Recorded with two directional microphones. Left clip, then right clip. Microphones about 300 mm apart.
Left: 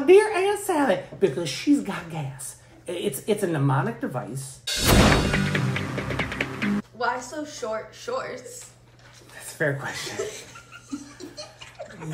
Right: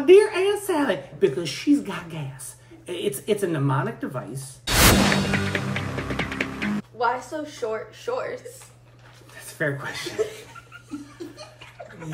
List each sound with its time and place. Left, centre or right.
0.0 s a woman's voice: centre
4.6 s music: centre
7.0 s a woman's voice: right
9.6 s speech: centre
10.2 s a woman's voice: right